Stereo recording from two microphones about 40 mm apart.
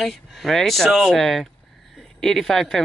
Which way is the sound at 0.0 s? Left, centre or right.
Centre.